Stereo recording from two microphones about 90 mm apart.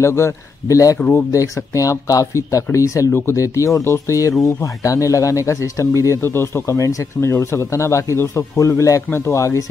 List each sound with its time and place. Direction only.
0.0 s speech: 30° left (ahead or behind)